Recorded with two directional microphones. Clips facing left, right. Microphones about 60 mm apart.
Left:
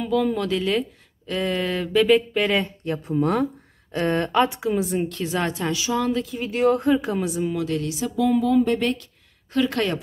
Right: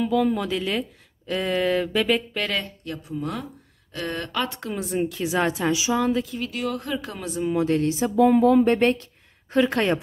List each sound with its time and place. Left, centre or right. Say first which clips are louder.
0.0 s speech: even; centre
2.5 s speech: left 6 dB; left
3.2 s speech: left 10 dB; left
3.9 s speech: left 8 dB; left
4.5 s a woman's voice: left 6 dB; centre
6.5 s speech: left 11 dB; left
6.9 s speech: left 9 dB; centre
7.5 s speech: right 4 dB; right